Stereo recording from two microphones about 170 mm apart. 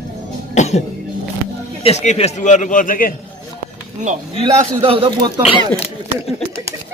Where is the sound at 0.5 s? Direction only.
40° left (ahead or behind).